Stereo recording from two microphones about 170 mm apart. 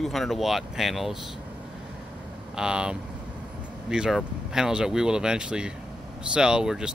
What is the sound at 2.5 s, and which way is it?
Speech, 5° right (ahead or behind).